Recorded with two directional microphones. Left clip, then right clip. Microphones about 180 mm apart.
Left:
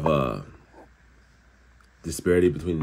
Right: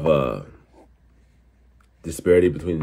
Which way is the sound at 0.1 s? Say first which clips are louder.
Right 5 dB; 15° left (ahead or behind).